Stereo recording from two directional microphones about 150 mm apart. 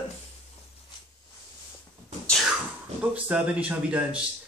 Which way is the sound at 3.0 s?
10° right (ahead or behind).